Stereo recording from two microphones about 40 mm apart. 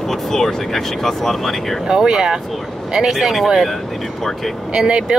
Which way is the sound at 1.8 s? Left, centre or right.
Centre.